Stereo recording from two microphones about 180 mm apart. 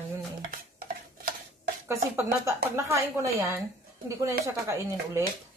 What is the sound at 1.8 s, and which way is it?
Speech, 15° right (ahead or behind).